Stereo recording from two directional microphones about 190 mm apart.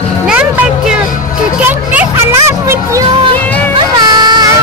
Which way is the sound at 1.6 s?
10° right (ahead or behind).